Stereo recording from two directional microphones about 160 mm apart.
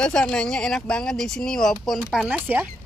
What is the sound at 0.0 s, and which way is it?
Speech, 5° left (ahead or behind).